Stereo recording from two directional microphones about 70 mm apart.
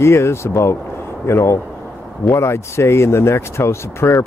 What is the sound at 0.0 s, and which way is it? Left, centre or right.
Speech, left.